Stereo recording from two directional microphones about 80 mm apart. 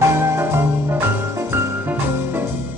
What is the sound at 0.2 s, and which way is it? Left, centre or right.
Music, right.